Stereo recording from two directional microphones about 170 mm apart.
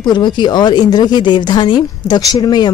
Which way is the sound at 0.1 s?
25° left (ahead or behind).